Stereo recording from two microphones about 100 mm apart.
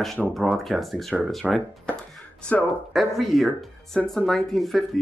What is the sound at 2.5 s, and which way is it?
Speech, 20° left (ahead or behind).